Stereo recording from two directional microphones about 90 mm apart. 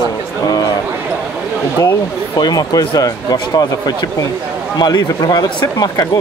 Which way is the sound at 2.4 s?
45° left (ahead or behind).